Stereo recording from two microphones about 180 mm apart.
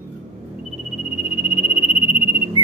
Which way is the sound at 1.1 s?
30° left (ahead or behind).